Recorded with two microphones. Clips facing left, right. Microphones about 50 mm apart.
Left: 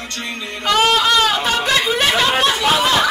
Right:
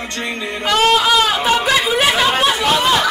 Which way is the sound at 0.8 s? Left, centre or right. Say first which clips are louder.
Right 1 dB; centre.